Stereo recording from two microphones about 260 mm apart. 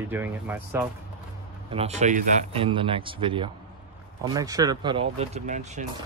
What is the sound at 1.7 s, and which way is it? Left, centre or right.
Speech, right.